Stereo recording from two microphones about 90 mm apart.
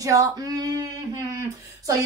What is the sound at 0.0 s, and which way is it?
Speech, 40° right (ahead or behind).